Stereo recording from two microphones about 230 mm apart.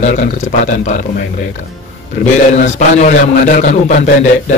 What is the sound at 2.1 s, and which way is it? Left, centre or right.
A man's voice, left.